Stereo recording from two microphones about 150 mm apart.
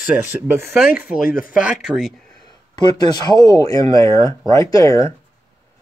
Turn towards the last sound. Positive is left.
turn(degrees=20)  # may be behind; listen again after turning